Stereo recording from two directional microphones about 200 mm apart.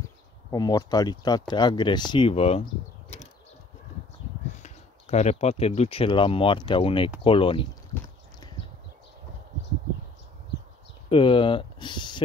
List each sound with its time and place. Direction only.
0.5 s speech: 20° left (ahead or behind)
4.6 s speech: 35° left (ahead or behind)
11.1 s speech: 25° left (ahead or behind)